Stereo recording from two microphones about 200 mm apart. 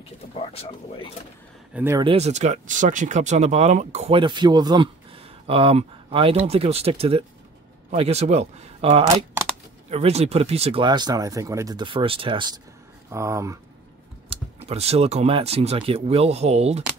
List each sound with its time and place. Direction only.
0.3 s speech: 30° left (ahead or behind)
1.7 s speech: 10° right (ahead or behind)
2.0 s speech: 30° right (ahead or behind)
14.3 s speech: 30° right (ahead or behind)